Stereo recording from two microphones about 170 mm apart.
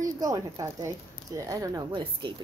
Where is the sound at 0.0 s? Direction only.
20° right (ahead or behind).